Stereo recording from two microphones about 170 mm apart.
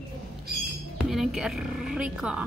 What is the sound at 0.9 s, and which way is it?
A woman's voice, centre (ahead or behind).